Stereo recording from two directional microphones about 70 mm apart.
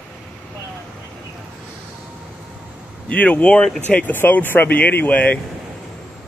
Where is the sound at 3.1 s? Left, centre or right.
Centre.